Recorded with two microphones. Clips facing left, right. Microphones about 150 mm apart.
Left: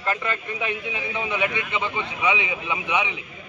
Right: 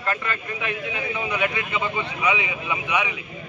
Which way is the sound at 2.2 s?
20° left (ahead or behind).